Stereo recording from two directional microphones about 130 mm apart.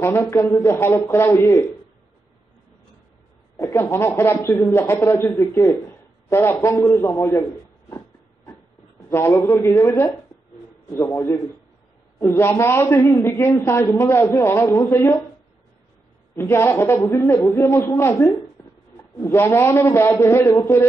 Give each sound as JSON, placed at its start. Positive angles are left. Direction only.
{"t": 0.0, "sound": "a man's voice", "side_deg": 20}
{"t": 3.5, "sound": "a man's voice", "side_deg": 20}
{"t": 9.1, "sound": "a man's voice", "side_deg": 20}
{"t": 16.3, "sound": "a man's voice", "side_deg": 20}